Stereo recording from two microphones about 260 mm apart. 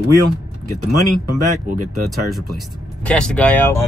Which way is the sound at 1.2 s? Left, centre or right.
Right.